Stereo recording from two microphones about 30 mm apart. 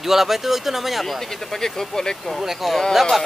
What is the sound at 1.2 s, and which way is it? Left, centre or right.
Speech, centre.